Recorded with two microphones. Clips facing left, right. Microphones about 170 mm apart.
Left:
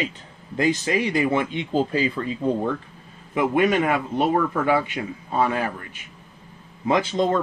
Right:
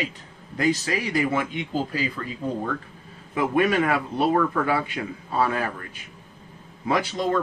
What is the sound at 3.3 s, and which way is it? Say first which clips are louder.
Speech: left 2 dB; 20° left (ahead or behind).